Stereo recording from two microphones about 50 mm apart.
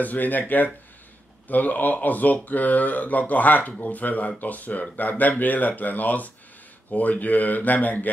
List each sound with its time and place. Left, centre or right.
0.0 s speech: left